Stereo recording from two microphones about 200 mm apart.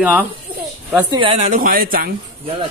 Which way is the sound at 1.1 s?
30° right (ahead or behind).